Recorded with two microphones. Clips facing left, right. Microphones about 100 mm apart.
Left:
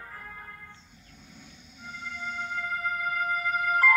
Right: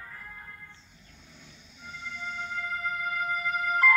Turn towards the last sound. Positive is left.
turn(degrees=50)  # may be behind; listen again after turning